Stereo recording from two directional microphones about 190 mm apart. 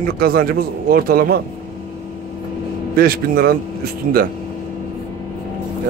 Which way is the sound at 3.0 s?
50° right (ahead or behind).